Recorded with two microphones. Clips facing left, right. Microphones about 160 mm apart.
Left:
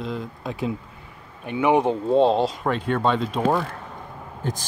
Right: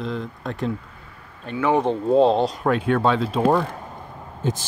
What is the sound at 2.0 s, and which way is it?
Speech, centre (ahead or behind).